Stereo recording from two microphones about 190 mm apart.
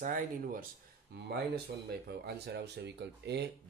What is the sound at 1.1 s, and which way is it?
Speech, 60° right (ahead or behind).